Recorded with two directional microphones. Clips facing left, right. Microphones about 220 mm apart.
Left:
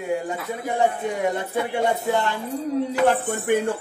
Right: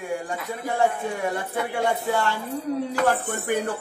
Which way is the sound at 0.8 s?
20° left (ahead or behind).